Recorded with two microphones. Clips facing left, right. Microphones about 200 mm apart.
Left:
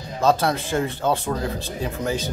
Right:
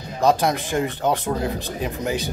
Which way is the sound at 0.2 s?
15° right (ahead or behind).